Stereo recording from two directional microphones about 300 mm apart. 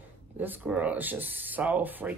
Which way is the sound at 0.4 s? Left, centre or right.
Centre.